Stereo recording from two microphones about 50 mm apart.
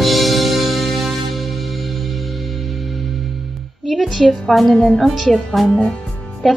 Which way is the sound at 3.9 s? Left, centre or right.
Centre.